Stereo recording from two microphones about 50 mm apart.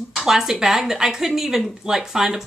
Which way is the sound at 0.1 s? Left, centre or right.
Centre.